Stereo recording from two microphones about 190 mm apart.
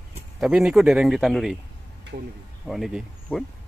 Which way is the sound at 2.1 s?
45° right (ahead or behind).